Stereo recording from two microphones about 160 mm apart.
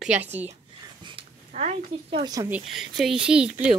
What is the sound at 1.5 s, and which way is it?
Speech, 45° right (ahead or behind).